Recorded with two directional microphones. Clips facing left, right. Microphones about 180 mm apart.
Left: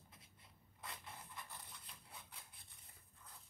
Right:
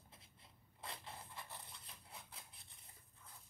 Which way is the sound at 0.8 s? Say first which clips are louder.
Right 2 dB; 25° right (ahead or behind).